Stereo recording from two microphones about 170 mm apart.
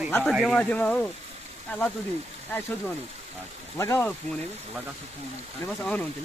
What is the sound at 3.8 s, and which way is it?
Speech, 15° left (ahead or behind).